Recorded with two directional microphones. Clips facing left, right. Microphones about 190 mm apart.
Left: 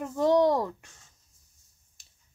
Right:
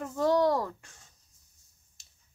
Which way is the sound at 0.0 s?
20° left (ahead or behind).